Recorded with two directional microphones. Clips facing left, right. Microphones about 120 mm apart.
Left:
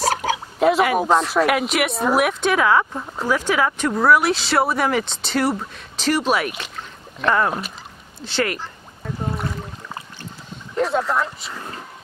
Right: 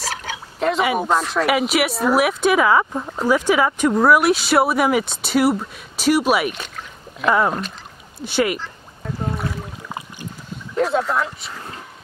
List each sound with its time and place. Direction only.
0.1 s a sound: 45° left (ahead or behind)
0.6 s speech: 5° left (ahead or behind); by 8.5 s 10° right (ahead or behind)
9.3 s speech: centre (ahead or behind)
10.9 s speech: centre (ahead or behind)